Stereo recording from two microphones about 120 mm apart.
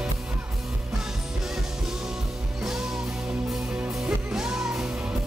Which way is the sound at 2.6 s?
5° right (ahead or behind).